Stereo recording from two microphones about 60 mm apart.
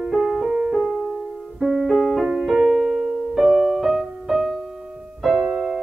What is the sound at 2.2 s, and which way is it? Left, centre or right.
Music, centre.